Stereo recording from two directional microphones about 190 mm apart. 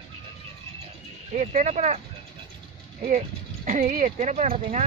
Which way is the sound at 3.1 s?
40° right (ahead or behind).